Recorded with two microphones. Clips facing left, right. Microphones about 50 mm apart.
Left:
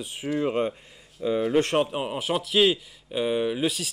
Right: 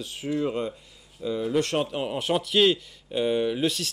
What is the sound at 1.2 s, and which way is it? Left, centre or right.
Speech, left.